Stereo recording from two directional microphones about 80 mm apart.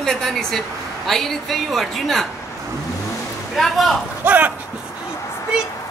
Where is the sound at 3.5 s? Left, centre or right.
Centre.